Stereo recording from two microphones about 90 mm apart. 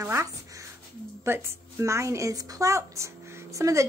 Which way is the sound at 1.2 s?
30° right (ahead or behind).